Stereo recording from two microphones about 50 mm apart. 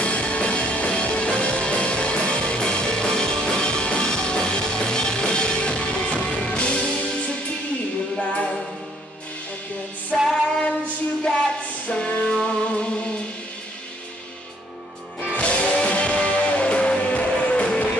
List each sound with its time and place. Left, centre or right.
0.0 s music: left
10.1 s female singing: centre
11.9 s music: centre
15.3 s music: left